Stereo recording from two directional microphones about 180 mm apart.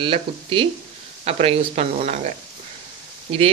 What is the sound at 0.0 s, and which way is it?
Speech, 30° right (ahead or behind).